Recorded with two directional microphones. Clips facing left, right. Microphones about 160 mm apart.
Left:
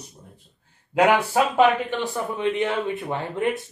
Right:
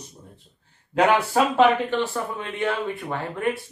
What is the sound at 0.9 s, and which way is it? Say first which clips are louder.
Speech: left 1 dB; 10° left (ahead or behind).